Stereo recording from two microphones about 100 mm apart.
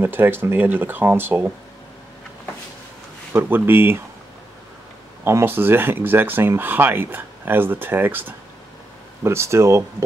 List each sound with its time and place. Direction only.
0.0 s speech: 20° right (ahead or behind)
3.3 s speech: 20° right (ahead or behind)
5.2 s speech: 25° right (ahead or behind)